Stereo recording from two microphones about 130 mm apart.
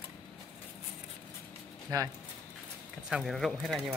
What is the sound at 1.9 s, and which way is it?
Speech, 25° right (ahead or behind).